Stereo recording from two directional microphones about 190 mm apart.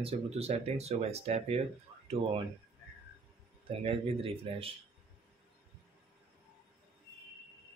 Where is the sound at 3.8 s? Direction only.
30° right (ahead or behind).